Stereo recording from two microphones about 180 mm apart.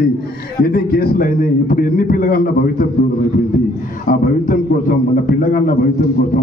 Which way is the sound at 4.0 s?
50° left (ahead or behind).